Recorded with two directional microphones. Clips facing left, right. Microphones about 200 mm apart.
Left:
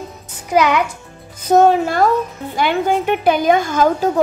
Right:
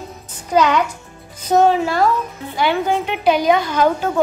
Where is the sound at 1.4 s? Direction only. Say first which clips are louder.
Left 2 dB; 50° left (ahead or behind).